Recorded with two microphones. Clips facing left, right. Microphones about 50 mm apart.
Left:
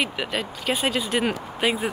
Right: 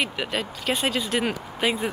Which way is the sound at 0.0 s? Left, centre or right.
Centre.